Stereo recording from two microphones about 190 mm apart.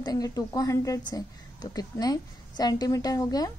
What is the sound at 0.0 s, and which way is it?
A woman's voice, 20° left (ahead or behind).